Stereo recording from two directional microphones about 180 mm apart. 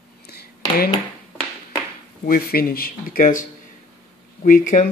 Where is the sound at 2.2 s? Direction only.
55° left (ahead or behind).